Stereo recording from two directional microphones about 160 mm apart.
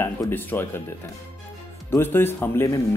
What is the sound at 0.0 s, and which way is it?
Speech, 15° left (ahead or behind).